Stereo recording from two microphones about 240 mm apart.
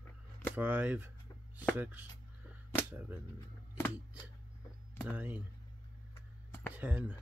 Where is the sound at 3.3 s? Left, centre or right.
Centre.